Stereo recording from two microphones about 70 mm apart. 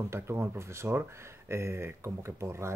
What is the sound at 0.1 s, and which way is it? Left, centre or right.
Speech, right.